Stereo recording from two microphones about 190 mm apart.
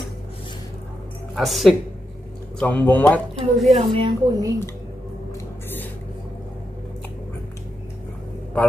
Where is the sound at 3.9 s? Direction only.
25° right (ahead or behind).